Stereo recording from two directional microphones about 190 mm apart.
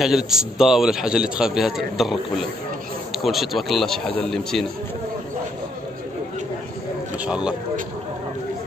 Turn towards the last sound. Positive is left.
turn(degrees=-5)  # may be behind; listen again after turning